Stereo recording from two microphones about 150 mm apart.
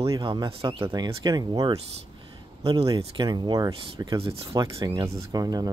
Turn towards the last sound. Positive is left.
turn(degrees=-25)  # may be behind; listen again after turning